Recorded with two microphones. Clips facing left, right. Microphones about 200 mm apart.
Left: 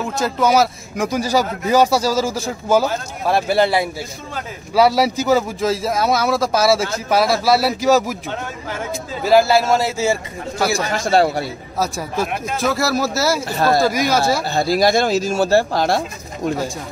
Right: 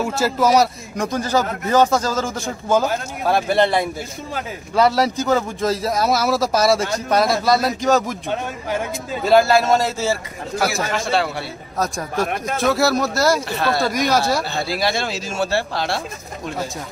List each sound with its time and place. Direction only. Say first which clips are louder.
0.0 s speech: even; 5° right (ahead or behind)
9.2 s speech: left 1 dB; 5° left (ahead or behind)
10.9 s speech: left 5 dB; 40° left (ahead or behind)
11.8 s speech: even; 5° left (ahead or behind)
13.5 s speech: left 4 dB; 40° left (ahead or behind)
13.8 s speech: left 2 dB; centre (ahead or behind)
14.4 s speech: left 6 dB; 40° left (ahead or behind)